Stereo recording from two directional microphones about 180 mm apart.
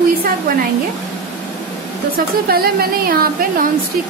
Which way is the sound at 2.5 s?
60° right (ahead or behind).